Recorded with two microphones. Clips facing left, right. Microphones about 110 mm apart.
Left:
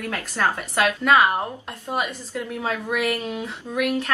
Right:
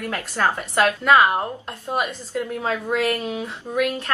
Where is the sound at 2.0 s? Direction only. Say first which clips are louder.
Right 3 dB; 15° right (ahead or behind).